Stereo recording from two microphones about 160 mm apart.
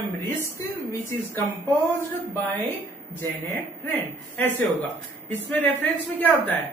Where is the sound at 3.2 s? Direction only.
15° left (ahead or behind).